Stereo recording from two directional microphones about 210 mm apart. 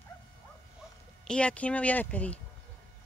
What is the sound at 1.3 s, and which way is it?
A woman's voice, 5° left (ahead or behind).